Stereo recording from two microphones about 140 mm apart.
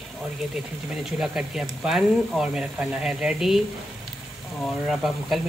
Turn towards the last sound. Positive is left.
turn(degrees=0)  # may be behind; listen again after turning